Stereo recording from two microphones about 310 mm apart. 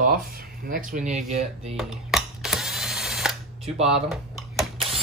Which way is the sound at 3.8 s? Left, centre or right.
Centre.